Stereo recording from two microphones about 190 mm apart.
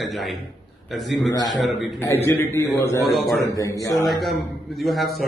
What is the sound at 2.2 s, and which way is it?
A man's voice, 15° left (ahead or behind).